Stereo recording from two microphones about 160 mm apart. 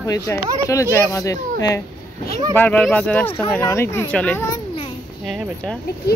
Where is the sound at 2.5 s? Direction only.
10° left (ahead or behind).